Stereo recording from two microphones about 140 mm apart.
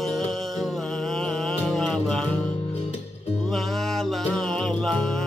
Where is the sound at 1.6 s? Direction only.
5° left (ahead or behind).